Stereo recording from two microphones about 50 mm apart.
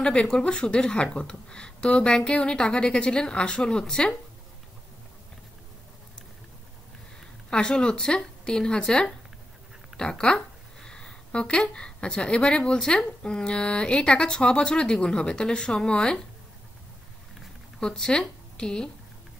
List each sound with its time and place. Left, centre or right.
0.0 s speech: left
7.4 s speech: centre
17.7 s speech: centre